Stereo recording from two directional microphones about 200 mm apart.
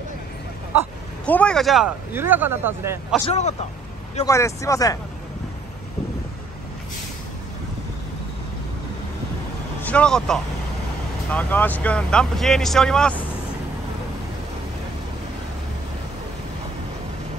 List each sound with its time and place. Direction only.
1.2 s speech: 5° left (ahead or behind)
2.1 s speech: 10° right (ahead or behind)
3.3 s speech: 35° left (ahead or behind)
4.3 s speech: 15° left (ahead or behind)
9.8 s speech: 5° left (ahead or behind)